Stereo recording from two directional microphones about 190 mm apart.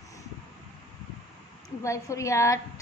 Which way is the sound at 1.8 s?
15° left (ahead or behind).